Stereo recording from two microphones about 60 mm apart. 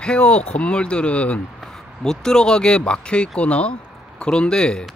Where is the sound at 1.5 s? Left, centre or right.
Centre.